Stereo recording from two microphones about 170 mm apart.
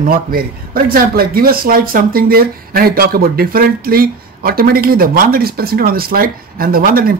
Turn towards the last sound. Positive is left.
turn(degrees=-60)  # may be behind; listen again after turning